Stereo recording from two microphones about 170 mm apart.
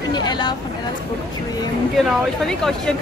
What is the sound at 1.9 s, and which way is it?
Speech, centre (ahead or behind).